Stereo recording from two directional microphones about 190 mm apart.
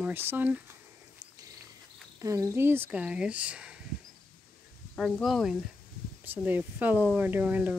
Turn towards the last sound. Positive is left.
turn(degrees=-10)  # may be behind; listen again after turning